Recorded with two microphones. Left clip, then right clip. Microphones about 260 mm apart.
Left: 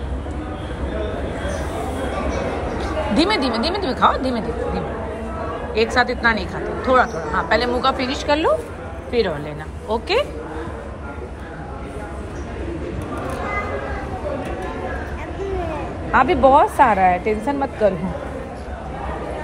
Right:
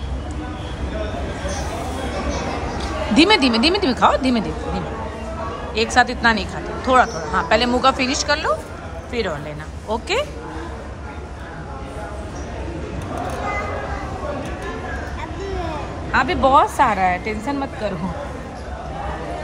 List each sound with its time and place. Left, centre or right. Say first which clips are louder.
2.8 s a woman's voice: right 4 dB; centre
16.1 s a woman's voice: left 2 dB; centre